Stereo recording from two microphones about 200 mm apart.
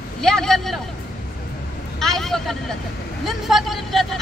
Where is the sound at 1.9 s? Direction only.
Centre (ahead or behind).